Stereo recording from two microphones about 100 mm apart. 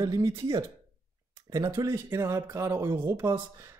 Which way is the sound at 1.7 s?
25° right (ahead or behind).